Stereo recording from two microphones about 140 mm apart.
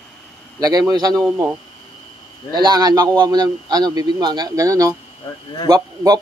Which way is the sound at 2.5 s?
30° right (ahead or behind).